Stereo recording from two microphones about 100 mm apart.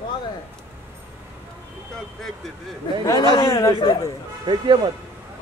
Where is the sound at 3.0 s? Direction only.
40° left (ahead or behind).